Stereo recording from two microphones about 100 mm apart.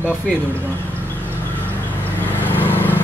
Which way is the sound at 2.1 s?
20° left (ahead or behind).